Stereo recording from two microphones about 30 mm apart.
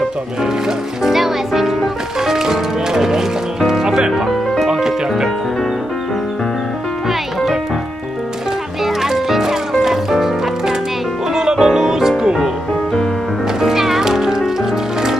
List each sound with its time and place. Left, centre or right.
1.0 s a child's voice: centre
2.2 s music: centre
8.8 s music: centre
11.6 s music: centre
13.6 s music: centre